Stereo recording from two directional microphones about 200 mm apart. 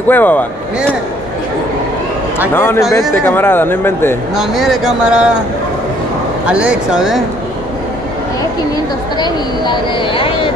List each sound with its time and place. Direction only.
0.1 s speech: 10° left (ahead or behind)
2.5 s speech: 10° left (ahead or behind)
4.4 s speech: centre (ahead or behind)
6.4 s speech: 5° right (ahead or behind)
9.2 s speech: 25° left (ahead or behind)